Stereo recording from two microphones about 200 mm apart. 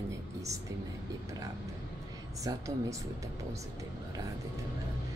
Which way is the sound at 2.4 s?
15° right (ahead or behind).